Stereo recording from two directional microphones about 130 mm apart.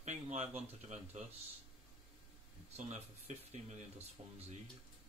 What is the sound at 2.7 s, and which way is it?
Speech, 55° right (ahead or behind).